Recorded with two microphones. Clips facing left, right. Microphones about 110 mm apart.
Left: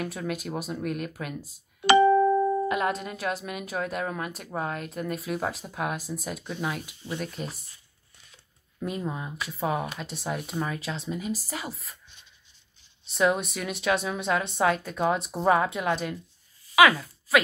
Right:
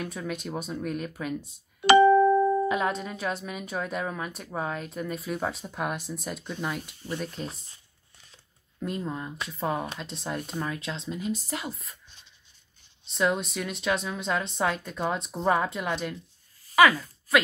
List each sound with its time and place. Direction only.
0.0 s speech: 5° left (ahead or behind)
2.7 s speech: centre (ahead or behind)
8.7 s speech: 5° left (ahead or behind)
13.0 s speech: 5° left (ahead or behind)